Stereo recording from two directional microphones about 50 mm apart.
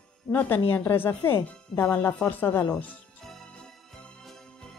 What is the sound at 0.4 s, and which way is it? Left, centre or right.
A woman's voice, left.